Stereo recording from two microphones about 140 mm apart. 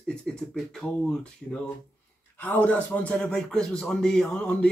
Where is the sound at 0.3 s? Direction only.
5° left (ahead or behind).